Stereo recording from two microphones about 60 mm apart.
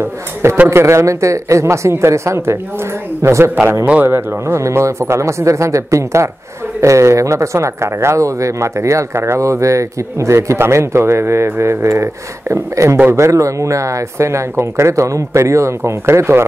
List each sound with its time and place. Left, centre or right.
0.0 s speech: right
4.0 s speech: right